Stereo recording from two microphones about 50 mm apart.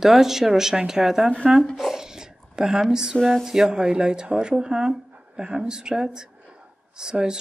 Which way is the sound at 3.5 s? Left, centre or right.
Centre.